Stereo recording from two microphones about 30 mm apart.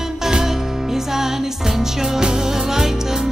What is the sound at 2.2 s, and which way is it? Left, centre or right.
Music, centre.